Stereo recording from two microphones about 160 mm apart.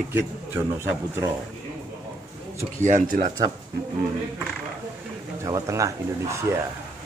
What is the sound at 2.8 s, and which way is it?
Speech, 55° right (ahead or behind).